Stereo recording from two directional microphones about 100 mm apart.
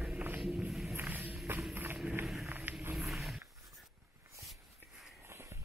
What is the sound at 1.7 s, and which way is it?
Run, 20° right (ahead or behind).